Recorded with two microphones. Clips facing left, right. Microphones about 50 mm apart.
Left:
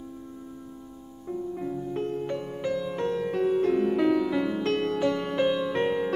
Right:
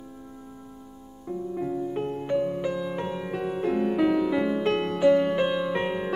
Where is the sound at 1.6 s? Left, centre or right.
Centre.